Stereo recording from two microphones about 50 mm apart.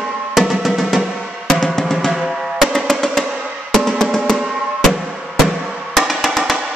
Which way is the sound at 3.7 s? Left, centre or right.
Centre.